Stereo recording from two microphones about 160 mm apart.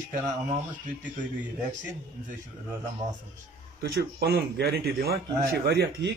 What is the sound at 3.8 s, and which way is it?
A man's voice, 90° right.